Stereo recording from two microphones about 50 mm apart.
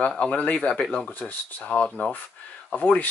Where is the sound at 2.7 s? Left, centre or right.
Left.